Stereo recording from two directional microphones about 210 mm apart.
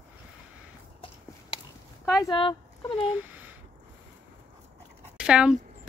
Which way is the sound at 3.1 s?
10° right (ahead or behind).